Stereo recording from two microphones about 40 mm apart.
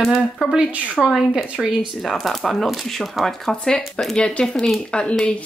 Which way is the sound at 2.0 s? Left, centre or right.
Centre.